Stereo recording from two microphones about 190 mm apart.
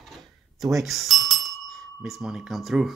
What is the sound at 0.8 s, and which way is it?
Speech, centre (ahead or behind).